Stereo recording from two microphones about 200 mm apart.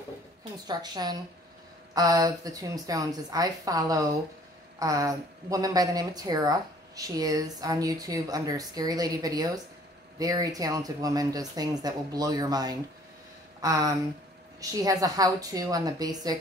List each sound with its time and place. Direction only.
0.7 s speech: 20° right (ahead or behind)